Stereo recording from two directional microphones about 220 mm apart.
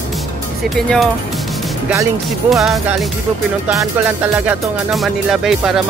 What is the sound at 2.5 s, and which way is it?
Speech, centre (ahead or behind).